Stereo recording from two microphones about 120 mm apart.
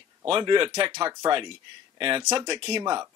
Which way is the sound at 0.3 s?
40° right (ahead or behind).